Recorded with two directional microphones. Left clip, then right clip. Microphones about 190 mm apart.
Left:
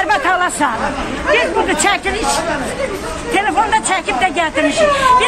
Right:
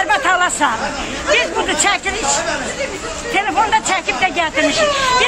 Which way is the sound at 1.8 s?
Centre (ahead or behind).